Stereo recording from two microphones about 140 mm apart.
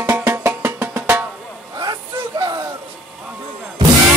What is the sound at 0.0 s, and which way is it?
Music, 15° right (ahead or behind).